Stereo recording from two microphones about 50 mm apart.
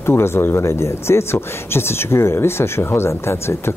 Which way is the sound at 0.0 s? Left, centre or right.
Left.